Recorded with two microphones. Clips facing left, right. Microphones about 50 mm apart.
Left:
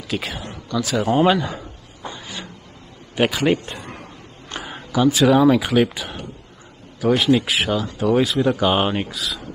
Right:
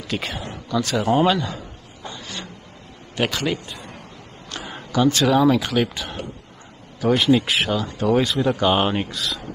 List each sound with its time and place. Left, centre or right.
0.1 s speech: centre
1.2 s a man's voice: centre
2.0 s a sound: centre
3.2 s a man's voice: centre
3.6 s a sound: left
4.5 s speech: centre